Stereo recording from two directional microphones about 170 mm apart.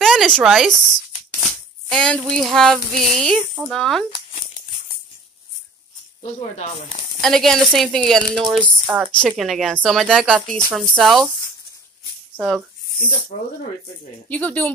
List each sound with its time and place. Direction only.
0.0 s speech: centre (ahead or behind)
1.4 s a sound: 5° left (ahead or behind)
3.2 s speech: 5° left (ahead or behind)
6.5 s speech: 40° left (ahead or behind)
7.2 s speech: 5° left (ahead or behind)
8.8 s a woman's voice: 10° right (ahead or behind)
9.2 s speech: centre (ahead or behind)
12.4 s speech: centre (ahead or behind)
14.3 s speech: 10° left (ahead or behind)